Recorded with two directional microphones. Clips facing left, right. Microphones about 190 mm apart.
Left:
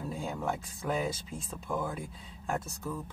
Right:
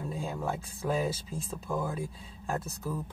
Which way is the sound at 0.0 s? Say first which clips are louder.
Even; centre (ahead or behind).